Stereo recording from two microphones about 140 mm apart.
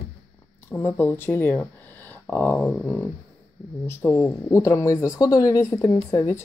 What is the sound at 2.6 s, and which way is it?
Speech, 10° left (ahead or behind).